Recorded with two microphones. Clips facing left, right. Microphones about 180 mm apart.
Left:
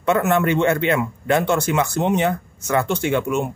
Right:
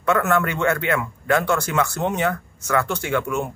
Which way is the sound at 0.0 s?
20° left (ahead or behind).